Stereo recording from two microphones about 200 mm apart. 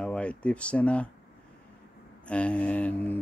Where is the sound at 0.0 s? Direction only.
5° left (ahead or behind).